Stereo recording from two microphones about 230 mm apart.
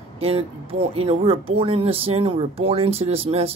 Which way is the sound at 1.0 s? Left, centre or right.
Right.